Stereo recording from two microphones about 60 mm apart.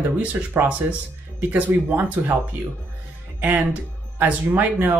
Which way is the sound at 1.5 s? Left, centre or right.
Right.